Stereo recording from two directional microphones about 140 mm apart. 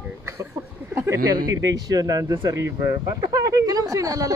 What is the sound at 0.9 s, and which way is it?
Speech, 20° right (ahead or behind).